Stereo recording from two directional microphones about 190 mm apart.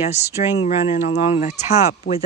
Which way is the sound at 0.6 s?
35° left (ahead or behind).